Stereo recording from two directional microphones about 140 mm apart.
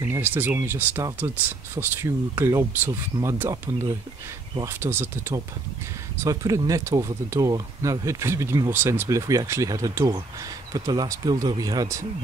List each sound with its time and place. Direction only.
0.1 s speech: 15° right (ahead or behind)